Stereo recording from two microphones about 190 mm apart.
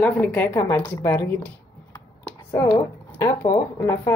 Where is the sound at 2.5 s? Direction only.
15° left (ahead or behind).